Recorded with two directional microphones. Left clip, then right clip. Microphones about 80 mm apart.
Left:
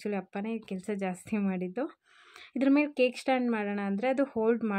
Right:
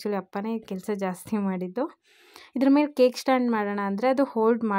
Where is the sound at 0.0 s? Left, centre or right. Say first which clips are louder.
Right 5 dB; right.